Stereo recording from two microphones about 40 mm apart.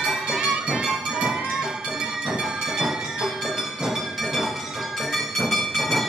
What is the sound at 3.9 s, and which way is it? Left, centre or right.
Music, centre.